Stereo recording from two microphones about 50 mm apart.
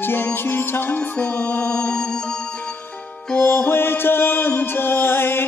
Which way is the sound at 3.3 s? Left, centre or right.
Left.